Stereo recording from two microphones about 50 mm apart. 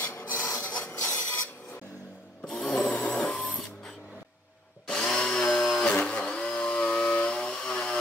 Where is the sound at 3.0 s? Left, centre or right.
Centre.